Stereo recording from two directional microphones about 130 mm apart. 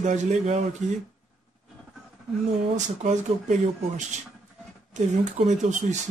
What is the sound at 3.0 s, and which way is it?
A man's voice, 65° right (ahead or behind).